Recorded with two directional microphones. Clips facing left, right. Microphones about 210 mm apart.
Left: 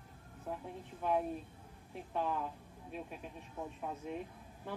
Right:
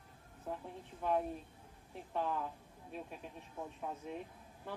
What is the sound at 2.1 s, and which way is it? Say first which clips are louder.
Speech: left 1 dB; 5° left (ahead or behind).